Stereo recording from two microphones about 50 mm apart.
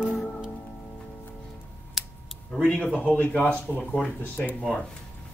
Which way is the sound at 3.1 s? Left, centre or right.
Left.